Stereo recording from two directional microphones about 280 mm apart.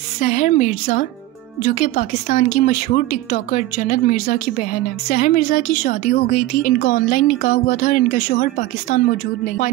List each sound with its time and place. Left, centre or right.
0.2 s speech: left